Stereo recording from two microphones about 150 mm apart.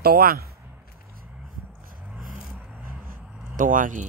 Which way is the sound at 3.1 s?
65° right (ahead or behind).